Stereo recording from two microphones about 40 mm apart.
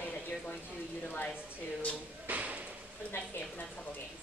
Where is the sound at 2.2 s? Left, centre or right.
Right.